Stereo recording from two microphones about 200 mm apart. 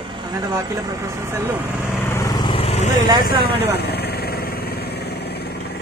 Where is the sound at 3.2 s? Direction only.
50° left (ahead or behind).